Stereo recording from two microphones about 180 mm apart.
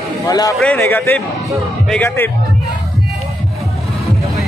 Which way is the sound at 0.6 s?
10° left (ahead or behind).